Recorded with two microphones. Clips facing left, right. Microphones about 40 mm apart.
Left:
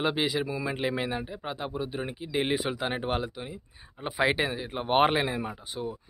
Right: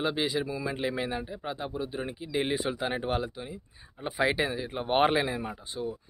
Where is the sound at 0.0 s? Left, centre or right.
Left.